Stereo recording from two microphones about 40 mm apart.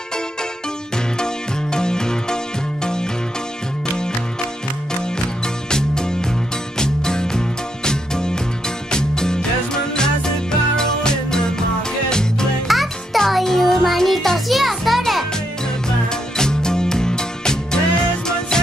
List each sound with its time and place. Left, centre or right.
1.1 s music: centre
5.7 s music: centre
12.6 s music: centre
16.1 s music: centre